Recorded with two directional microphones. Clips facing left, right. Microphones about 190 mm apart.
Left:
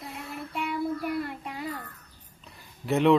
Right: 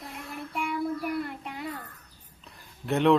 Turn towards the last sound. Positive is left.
turn(degrees=0)  # may be behind; listen again after turning